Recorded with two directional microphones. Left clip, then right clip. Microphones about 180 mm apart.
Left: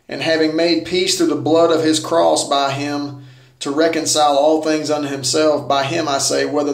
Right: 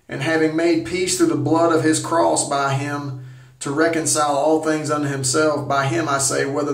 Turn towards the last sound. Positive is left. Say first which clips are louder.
# left 3 dB
turn(degrees=5)  # may be behind; listen again after turning